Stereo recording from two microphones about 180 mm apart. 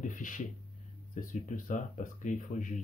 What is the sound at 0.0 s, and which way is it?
Speech, 45° left (ahead or behind).